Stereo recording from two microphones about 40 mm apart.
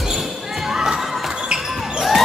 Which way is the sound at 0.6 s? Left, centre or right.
Centre.